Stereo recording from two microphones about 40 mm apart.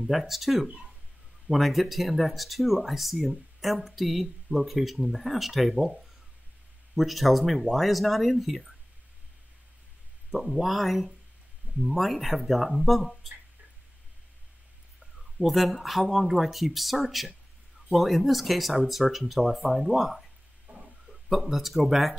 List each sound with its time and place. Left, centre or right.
0.0 s speech: centre
0.7 s speech: centre
1.5 s speech: centre
7.0 s speech: centre
10.3 s speech: centre
15.0 s speech: centre
20.7 s a sound: right
21.1 s speech: centre